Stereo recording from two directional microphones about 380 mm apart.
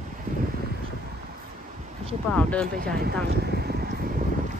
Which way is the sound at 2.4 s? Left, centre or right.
Centre.